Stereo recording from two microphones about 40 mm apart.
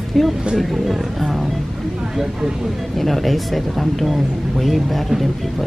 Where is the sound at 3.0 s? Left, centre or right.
Centre.